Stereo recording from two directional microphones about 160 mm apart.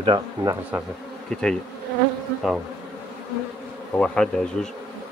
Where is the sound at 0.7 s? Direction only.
10° right (ahead or behind).